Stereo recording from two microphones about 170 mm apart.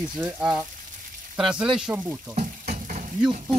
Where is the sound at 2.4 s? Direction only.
40° right (ahead or behind).